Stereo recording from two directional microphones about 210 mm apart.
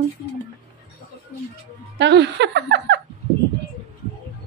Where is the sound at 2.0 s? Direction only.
55° right (ahead or behind).